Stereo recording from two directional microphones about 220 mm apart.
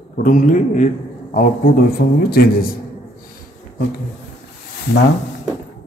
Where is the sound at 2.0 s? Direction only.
45° left (ahead or behind).